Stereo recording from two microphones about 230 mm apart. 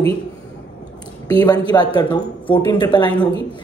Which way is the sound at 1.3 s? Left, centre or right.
Centre.